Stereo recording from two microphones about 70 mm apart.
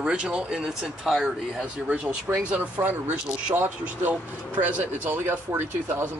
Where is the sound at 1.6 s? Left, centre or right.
Centre.